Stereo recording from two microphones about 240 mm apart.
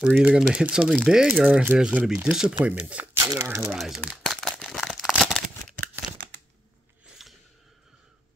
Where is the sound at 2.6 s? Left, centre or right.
Centre.